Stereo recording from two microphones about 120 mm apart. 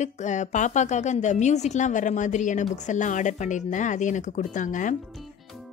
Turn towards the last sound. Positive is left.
turn(degrees=90)